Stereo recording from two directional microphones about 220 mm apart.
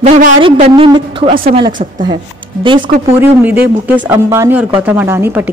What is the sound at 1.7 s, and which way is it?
Speech, 35° right (ahead or behind).